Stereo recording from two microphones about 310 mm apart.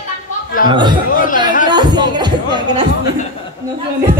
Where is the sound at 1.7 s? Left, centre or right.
Centre.